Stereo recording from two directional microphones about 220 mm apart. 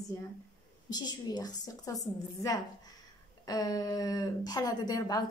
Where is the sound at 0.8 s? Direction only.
20° left (ahead or behind).